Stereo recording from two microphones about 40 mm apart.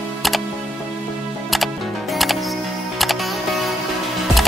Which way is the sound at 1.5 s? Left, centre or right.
Centre.